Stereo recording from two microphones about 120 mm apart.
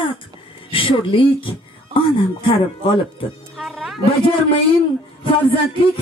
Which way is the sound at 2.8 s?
50° left (ahead or behind).